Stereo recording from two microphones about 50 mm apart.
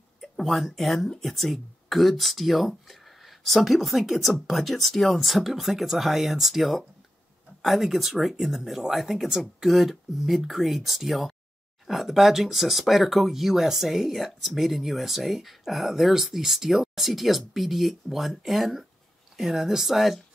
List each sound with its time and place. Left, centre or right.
0.2 s speech: centre